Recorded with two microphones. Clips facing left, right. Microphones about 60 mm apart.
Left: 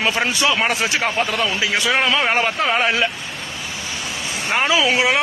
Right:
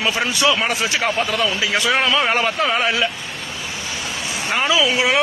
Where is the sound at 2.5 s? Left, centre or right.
Left.